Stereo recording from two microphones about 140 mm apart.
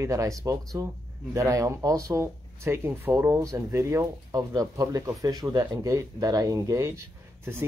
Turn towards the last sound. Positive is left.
turn(degrees=-20)  # may be behind; listen again after turning